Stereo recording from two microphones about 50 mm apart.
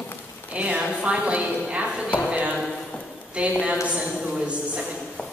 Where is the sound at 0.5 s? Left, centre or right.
Right.